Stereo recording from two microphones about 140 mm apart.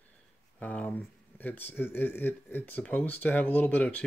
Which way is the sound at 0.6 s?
10° left (ahead or behind).